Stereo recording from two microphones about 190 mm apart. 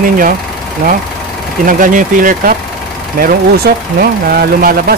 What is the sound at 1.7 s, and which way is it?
Speech, 45° right (ahead or behind).